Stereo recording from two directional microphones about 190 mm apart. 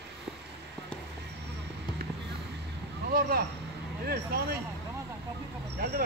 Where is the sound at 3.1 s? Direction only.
50° right (ahead or behind).